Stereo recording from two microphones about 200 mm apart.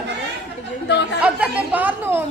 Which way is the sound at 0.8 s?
60° left (ahead or behind).